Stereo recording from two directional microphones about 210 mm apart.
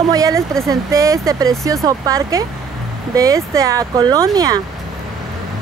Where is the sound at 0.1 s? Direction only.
15° right (ahead or behind).